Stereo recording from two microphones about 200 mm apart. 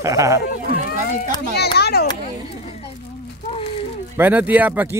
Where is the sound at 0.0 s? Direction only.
15° right (ahead or behind).